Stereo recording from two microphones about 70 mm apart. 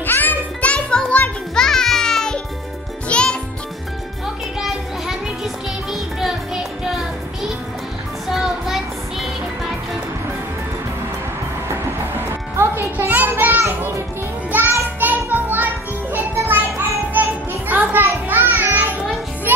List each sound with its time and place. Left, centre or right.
0.0 s music: left
4.6 s music: centre
8.3 s music: centre
11.7 s music: right